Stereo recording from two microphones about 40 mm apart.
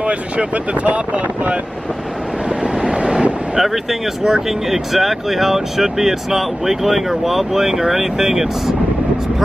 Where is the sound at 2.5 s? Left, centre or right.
Right.